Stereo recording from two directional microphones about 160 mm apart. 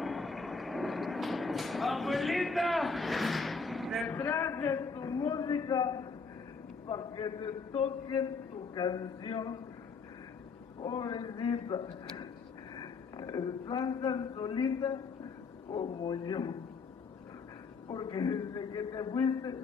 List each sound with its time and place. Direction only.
0.0 s vehicle: centre (ahead or behind)
4.2 s speech: 10° left (ahead or behind)
10.8 s a man's voice: 25° left (ahead or behind)
17.8 s speech: 25° left (ahead or behind)